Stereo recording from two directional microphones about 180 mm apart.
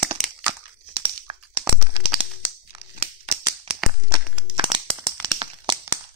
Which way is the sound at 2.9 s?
35° right (ahead or behind).